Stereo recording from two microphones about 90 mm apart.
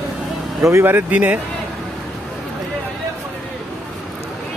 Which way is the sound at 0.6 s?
25° right (ahead or behind).